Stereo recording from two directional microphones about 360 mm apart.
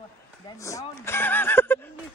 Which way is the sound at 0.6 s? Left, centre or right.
Centre.